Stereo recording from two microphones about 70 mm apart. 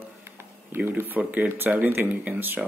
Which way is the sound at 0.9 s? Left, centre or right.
Right.